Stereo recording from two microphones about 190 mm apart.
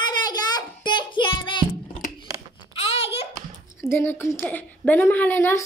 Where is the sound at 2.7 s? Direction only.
30° left (ahead or behind).